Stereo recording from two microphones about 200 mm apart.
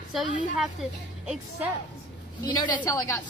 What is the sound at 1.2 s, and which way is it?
Speech, 5° right (ahead or behind).